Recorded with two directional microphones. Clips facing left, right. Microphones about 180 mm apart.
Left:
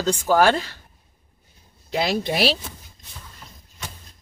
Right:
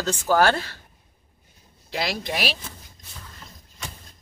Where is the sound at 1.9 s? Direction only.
25° left (ahead or behind).